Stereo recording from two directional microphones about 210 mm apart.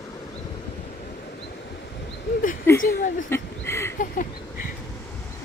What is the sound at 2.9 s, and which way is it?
Speech, 40° left (ahead or behind).